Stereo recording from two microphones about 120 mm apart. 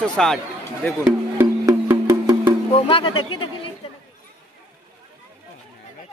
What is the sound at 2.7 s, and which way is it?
Speech, 50° left (ahead or behind).